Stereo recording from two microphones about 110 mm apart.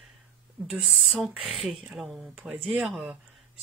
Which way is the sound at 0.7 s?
10° right (ahead or behind).